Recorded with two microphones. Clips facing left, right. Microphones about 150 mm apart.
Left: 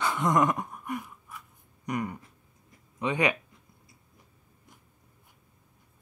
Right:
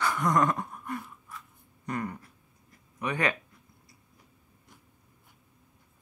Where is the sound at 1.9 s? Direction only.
15° left (ahead or behind).